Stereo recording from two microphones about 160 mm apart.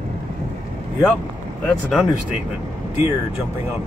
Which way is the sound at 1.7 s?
5° left (ahead or behind).